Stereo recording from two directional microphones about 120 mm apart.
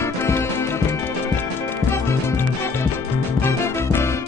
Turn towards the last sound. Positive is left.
turn(degrees=20)  # may be behind; listen again after turning